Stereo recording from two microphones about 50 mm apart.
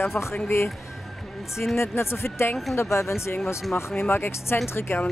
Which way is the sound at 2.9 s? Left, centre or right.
Left.